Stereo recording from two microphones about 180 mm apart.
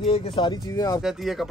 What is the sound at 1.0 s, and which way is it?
Speech, centre (ahead or behind).